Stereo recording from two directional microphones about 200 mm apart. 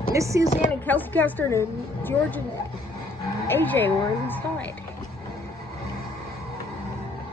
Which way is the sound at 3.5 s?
10° left (ahead or behind).